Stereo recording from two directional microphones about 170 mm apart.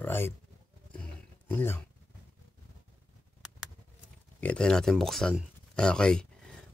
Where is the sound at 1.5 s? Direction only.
10° left (ahead or behind).